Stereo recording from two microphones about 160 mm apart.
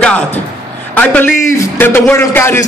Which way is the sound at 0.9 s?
10° left (ahead or behind).